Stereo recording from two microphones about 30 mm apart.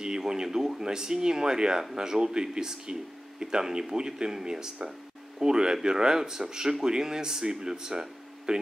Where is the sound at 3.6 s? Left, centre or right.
Centre.